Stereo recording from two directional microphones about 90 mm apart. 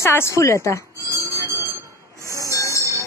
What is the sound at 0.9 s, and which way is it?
Bell, 40° right (ahead or behind).